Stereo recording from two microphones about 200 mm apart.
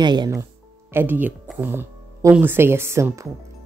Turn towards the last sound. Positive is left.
turn(degrees=-15)  # may be behind; listen again after turning